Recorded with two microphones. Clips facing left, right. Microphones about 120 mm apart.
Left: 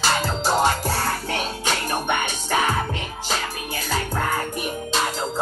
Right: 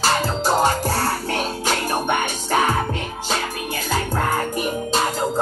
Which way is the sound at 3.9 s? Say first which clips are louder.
Right 2 dB; 40° right (ahead or behind).